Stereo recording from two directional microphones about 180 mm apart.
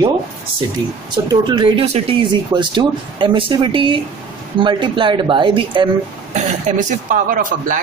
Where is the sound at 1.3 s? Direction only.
25° right (ahead or behind).